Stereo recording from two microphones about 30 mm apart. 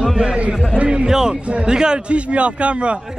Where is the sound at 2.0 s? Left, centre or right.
Right.